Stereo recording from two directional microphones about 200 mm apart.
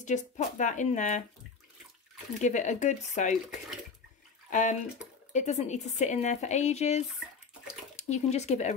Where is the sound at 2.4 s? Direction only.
35° left (ahead or behind).